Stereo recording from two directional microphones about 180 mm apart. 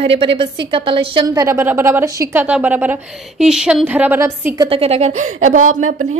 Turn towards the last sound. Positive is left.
turn(degrees=-40)  # may be behind; listen again after turning